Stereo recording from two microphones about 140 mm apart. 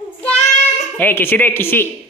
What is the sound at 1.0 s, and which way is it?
Speech, 15° left (ahead or behind).